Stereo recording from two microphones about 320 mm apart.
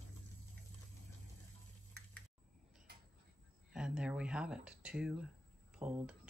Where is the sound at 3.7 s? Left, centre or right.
Centre.